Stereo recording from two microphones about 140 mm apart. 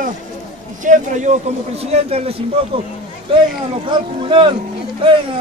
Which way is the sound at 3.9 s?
35° right (ahead or behind).